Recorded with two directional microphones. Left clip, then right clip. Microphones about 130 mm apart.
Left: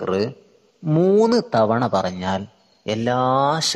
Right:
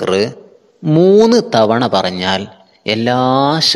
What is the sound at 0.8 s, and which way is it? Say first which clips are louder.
A man's voice: right 7 dB; 15° right (ahead or behind).